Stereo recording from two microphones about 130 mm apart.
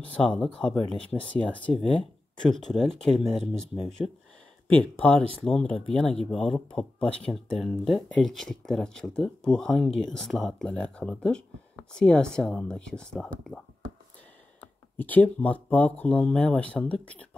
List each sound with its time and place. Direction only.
0.0 s speech: 10° left (ahead or behind)
0.9 s speech: 45° left (ahead or behind)
1.3 s speech: 10° left (ahead or behind)
4.6 s speech: 10° left (ahead or behind)
14.6 s speech: 15° left (ahead or behind)